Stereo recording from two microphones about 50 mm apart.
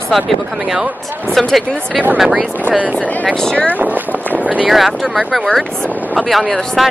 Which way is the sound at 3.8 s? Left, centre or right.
Right.